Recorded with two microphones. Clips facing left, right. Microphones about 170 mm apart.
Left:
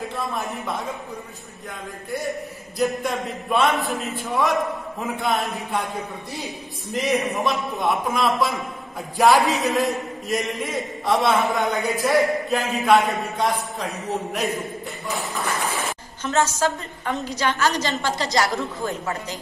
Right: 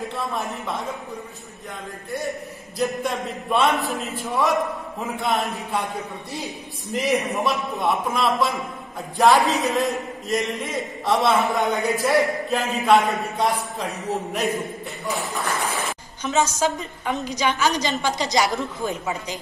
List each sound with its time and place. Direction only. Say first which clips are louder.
2.8 s a man's voice: left 1 dB; centre (ahead or behind)
6.9 s a man's voice: even; centre (ahead or behind)
16.4 s a woman's voice: even; 20° right (ahead or behind)